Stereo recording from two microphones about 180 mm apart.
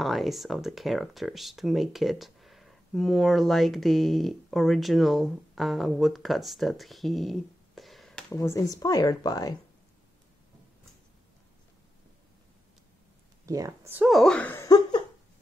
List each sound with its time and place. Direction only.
0.0 s speech: centre (ahead or behind)
8.4 s a woman's voice: 15° left (ahead or behind)
13.5 s speech: 20° right (ahead or behind)
14.0 s speech: centre (ahead or behind)